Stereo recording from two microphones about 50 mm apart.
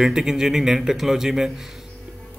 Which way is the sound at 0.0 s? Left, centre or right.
Centre.